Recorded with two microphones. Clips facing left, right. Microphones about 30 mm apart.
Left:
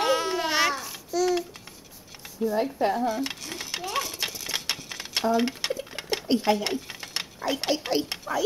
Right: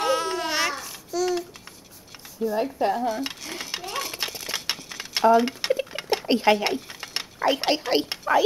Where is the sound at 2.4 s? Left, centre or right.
Centre.